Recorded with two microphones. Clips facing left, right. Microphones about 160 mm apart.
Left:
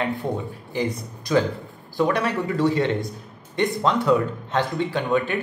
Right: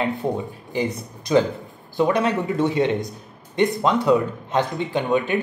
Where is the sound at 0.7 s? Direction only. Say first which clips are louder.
Right 1 dB; 20° right (ahead or behind).